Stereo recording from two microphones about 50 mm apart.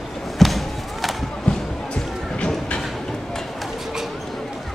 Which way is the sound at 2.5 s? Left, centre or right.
Centre.